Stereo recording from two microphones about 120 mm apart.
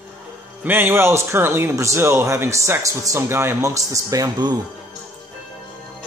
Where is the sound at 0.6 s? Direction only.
15° right (ahead or behind); by 4.6 s 35° right (ahead or behind).